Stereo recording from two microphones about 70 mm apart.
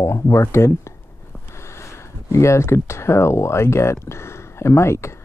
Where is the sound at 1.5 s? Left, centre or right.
Left.